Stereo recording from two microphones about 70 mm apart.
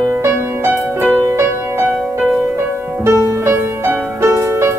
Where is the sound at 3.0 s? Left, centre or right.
Right.